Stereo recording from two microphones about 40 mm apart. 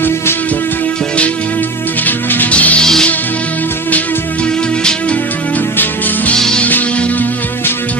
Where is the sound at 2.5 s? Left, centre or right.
Left.